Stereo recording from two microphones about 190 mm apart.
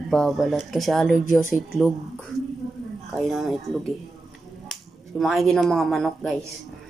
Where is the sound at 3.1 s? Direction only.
Centre (ahead or behind).